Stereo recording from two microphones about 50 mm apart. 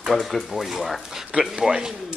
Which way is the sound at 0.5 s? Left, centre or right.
Centre.